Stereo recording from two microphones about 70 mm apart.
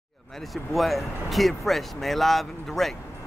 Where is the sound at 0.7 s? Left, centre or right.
Centre.